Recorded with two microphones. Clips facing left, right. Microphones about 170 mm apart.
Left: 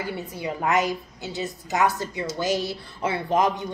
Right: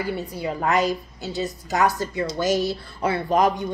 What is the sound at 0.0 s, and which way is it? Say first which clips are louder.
Speech: right 3 dB; 20° left (ahead or behind).